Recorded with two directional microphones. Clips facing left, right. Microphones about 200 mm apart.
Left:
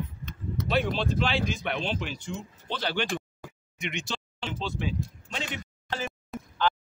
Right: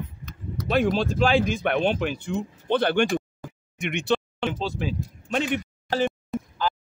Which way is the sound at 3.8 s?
60° right (ahead or behind).